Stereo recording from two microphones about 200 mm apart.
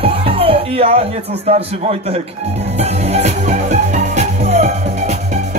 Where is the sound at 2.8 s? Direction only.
30° right (ahead or behind).